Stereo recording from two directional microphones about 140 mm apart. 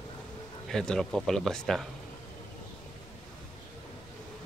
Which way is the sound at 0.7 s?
5° left (ahead or behind).